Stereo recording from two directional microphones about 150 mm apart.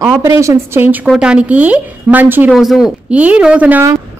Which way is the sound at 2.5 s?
Centre (ahead or behind).